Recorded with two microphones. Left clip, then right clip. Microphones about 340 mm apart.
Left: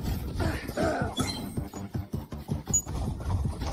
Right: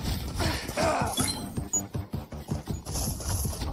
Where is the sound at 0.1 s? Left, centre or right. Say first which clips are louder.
Right 2 dB; centre.